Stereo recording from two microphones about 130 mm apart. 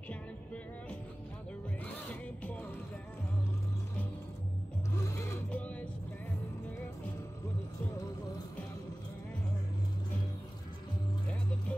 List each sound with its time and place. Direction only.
1.9 s music: 10° left (ahead or behind)
5.1 s music: 10° left (ahead or behind)